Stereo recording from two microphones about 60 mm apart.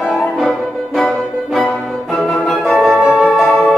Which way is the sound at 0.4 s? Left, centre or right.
Centre.